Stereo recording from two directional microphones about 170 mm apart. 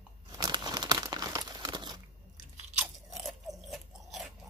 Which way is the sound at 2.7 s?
Centre (ahead or behind).